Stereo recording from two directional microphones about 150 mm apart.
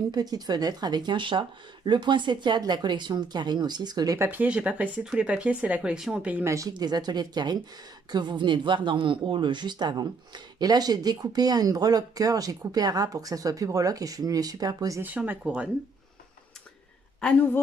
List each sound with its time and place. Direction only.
0.1 s speech: 25° right (ahead or behind)
4.3 s speech: 10° right (ahead or behind); by 15.0 s 25° right (ahead or behind)
15.0 s speech: 10° right (ahead or behind)
17.2 s speech: 5° left (ahead or behind)